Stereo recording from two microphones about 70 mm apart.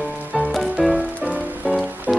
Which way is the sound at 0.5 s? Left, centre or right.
Centre.